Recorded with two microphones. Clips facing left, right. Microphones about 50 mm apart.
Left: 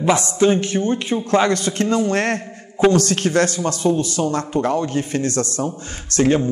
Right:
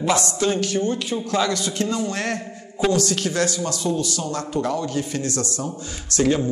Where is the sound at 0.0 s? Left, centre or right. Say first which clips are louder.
Left 5 dB; left.